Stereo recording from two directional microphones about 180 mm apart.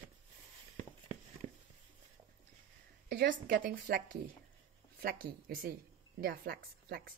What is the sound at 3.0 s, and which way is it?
A woman's voice, 65° right (ahead or behind).